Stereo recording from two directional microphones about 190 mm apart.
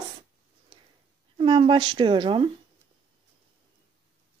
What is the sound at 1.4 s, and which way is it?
Speech, 30° right (ahead or behind).